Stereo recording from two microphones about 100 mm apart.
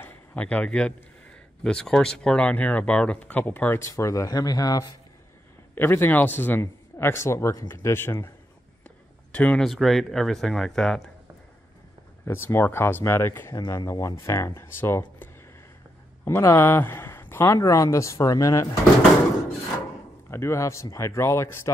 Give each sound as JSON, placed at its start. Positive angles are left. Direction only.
{"t": 0.0, "sound": "a man's voice", "side_deg": 15}
{"t": 3.9, "sound": "speech", "side_deg": 35}
{"t": 5.8, "sound": "speech", "side_deg": 20}
{"t": 9.3, "sound": "speech", "side_deg": 15}
{"t": 9.6, "sound": "speech", "side_deg": 0}
{"t": 12.3, "sound": "speech", "side_deg": 25}
{"t": 16.3, "sound": "speech", "side_deg": 25}
{"t": 20.2, "sound": "speech", "side_deg": 25}